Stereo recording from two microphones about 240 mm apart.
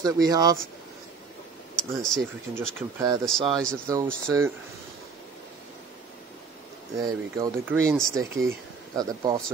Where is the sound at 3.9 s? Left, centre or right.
Centre.